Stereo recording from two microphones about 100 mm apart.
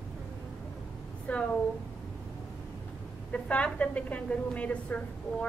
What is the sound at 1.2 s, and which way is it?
Speech, 10° left (ahead or behind).